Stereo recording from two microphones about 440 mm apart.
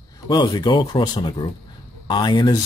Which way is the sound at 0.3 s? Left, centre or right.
Centre.